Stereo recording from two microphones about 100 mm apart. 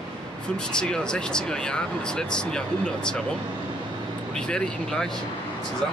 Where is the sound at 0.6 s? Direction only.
10° left (ahead or behind).